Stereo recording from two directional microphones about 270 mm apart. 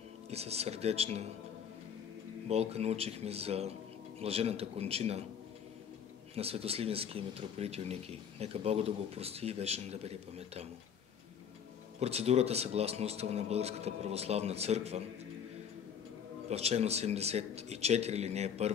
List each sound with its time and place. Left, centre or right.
0.3 s speech: right
2.4 s speech: right
6.3 s speech: right
12.0 s speech: right
16.4 s speech: right